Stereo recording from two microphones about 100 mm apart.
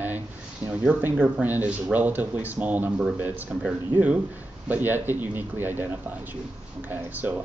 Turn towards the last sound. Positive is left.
turn(degrees=-20)  # may be behind; listen again after turning